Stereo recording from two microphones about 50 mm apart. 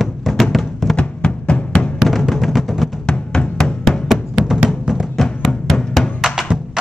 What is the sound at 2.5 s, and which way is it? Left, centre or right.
Music, centre.